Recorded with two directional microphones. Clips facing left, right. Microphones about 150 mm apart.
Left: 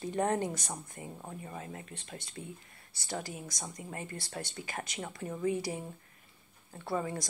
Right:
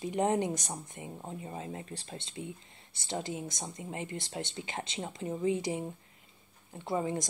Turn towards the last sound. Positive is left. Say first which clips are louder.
# right 2 dB
turn(degrees=-20)  # may be behind; listen again after turning